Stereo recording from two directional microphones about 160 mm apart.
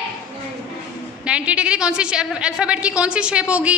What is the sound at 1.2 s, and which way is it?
A woman's voice, 5° right (ahead or behind).